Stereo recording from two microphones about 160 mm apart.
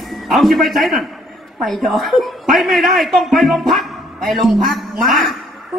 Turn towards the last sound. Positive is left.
turn(degrees=0)  # may be behind; listen again after turning